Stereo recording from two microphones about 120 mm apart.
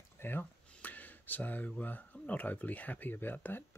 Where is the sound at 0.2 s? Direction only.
15° left (ahead or behind).